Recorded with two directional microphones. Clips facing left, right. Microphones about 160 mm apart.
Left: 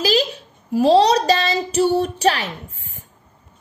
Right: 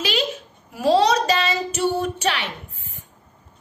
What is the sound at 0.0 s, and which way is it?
Babbling, 35° left (ahead or behind).